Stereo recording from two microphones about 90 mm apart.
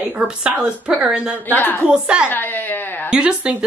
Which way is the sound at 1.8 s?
10° right (ahead or behind).